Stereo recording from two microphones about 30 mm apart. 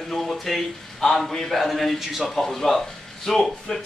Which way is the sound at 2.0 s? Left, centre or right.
Centre.